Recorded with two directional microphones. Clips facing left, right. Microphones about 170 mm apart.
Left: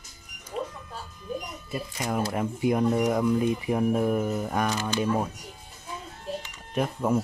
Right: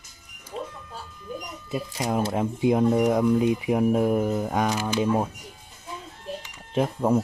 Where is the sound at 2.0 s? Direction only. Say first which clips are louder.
Right 3 dB; 20° right (ahead or behind).